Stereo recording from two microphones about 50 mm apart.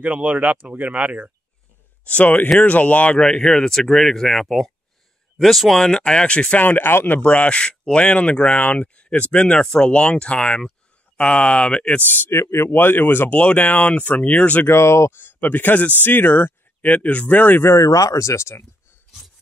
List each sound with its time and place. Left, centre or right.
0.0 s speech: right
2.0 s speech: left
3.2 s speech: centre
5.9 s speech: centre
6.6 s speech: left
7.2 s speech: left
9.6 s speech: centre
9.8 s speech: left
12.3 s speech: left
12.7 s speech: left
13.3 s speech: left
14.7 s speech: left
15.1 s speech: left
17.7 s speech: left